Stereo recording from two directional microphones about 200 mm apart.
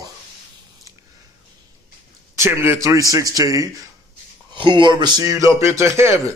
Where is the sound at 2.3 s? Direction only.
10° right (ahead or behind).